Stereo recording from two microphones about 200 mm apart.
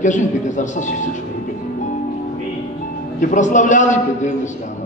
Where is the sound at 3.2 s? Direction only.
40° left (ahead or behind).